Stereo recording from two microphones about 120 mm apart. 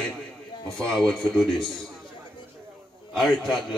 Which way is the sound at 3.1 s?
5° left (ahead or behind).